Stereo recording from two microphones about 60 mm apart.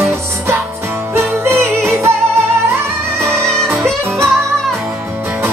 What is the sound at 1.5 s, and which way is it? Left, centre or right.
Music, right.